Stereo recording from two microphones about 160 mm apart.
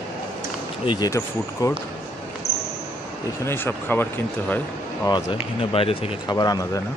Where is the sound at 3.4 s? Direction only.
15° left (ahead or behind).